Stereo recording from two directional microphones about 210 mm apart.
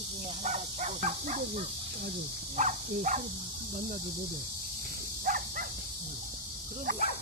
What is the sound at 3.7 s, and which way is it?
Cricket, 55° right (ahead or behind).